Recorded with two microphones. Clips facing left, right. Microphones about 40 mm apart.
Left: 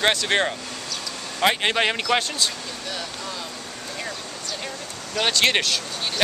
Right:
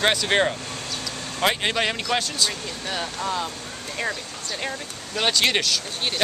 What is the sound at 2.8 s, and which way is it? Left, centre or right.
Speech, right.